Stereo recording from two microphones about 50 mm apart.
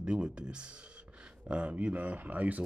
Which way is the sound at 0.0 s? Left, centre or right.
Centre.